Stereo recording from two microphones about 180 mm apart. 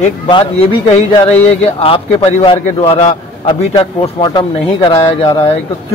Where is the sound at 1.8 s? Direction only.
30° left (ahead or behind).